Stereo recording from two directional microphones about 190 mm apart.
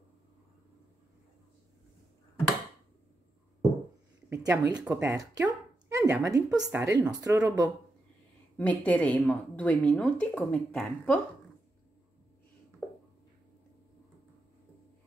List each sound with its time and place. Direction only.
4.3 s a woman's voice: 15° right (ahead or behind)
8.5 s speech: 10° left (ahead or behind)
12.8 s a sound: 10° left (ahead or behind)